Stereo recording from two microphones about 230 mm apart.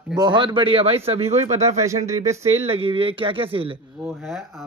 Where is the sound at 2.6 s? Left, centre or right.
Right.